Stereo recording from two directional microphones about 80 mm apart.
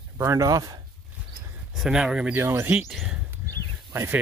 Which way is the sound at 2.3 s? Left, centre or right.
Right.